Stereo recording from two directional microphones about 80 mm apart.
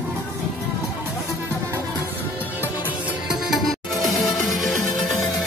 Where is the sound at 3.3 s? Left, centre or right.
Centre.